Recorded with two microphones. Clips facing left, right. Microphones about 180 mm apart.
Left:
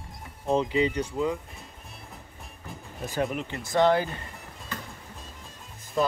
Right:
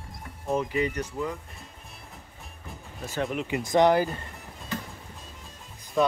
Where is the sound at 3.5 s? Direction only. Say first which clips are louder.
Right 2 dB; 15° right (ahead or behind).